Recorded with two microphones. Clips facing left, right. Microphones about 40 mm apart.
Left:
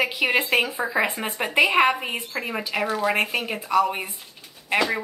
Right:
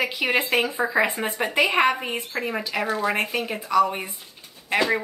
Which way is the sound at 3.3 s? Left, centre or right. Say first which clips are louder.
Even; centre.